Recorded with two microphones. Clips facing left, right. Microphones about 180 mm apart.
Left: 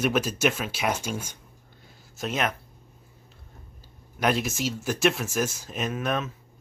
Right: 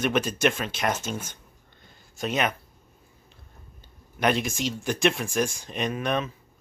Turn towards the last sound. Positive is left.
turn(degrees=0)  # may be behind; listen again after turning